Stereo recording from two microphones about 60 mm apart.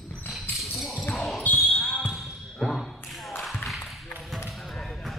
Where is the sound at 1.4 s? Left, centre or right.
Left.